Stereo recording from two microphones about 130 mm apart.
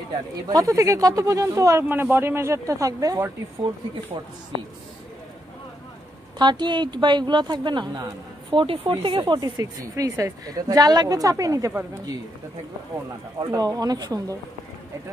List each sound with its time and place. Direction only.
0.5 s speech: 25° right (ahead or behind)
4.2 s a woman's voice: 40° right (ahead or behind)
6.3 s a woman's voice: 35° right (ahead or behind)
13.4 s speech: 30° right (ahead or behind)